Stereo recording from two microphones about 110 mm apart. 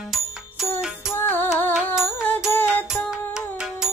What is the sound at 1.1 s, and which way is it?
Music, 25° left (ahead or behind).